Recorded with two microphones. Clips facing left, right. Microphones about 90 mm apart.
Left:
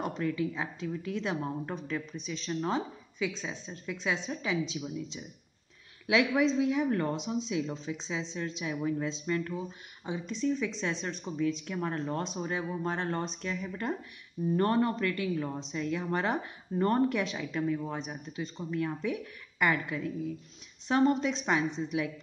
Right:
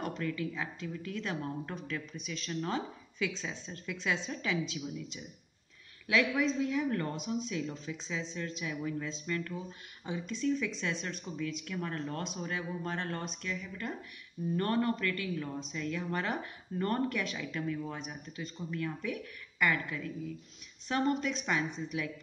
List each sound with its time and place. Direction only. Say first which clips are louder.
0.0 s a woman's voice: left 4 dB; 20° left (ahead or behind)
6.0 s a woman's voice: left 3 dB; 20° left (ahead or behind)
14.6 s a woman's voice: left 3 dB; 25° left (ahead or behind)